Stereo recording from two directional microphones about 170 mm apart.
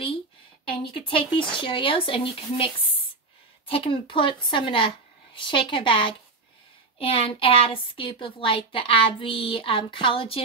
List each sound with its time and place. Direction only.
0.7 s a woman's voice: 30° left (ahead or behind)